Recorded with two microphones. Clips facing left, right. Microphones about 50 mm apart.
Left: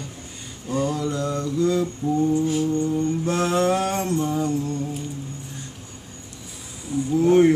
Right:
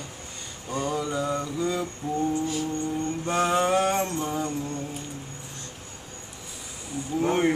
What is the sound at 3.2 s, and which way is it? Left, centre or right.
Music, centre.